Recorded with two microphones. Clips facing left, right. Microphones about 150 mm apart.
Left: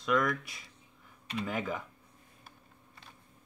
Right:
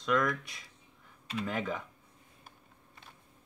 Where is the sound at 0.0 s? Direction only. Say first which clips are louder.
Even; 5° left (ahead or behind).